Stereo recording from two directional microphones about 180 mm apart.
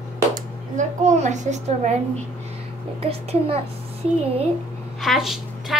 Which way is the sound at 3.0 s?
35° right (ahead or behind).